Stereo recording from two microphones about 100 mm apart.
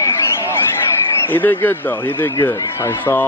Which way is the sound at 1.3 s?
20° left (ahead or behind).